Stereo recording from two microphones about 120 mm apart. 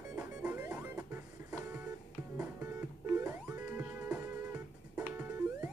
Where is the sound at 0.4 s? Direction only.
10° right (ahead or behind).